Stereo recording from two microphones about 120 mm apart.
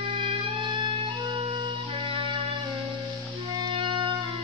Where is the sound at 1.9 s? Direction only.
45° right (ahead or behind).